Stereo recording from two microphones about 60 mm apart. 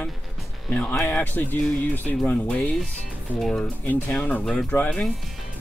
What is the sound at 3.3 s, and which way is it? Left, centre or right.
Speech, centre.